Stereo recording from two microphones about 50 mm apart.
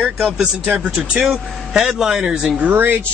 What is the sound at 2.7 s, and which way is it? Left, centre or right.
Speech, right.